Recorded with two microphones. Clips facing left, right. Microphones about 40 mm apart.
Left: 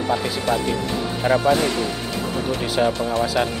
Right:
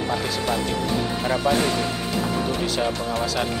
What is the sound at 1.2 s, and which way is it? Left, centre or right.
Speech, centre.